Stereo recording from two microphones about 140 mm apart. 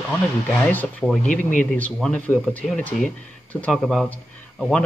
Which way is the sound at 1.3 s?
65° left (ahead or behind).